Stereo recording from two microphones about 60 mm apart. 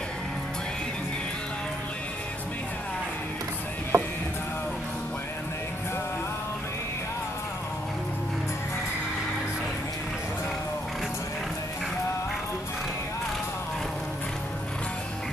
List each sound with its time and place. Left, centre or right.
3.9 s music: right